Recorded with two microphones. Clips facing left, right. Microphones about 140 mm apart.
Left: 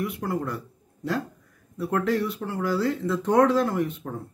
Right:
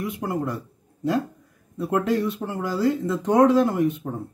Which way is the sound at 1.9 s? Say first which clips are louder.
Right 2 dB; 15° right (ahead or behind).